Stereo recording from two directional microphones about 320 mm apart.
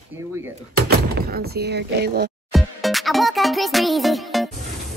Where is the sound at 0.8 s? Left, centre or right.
Right.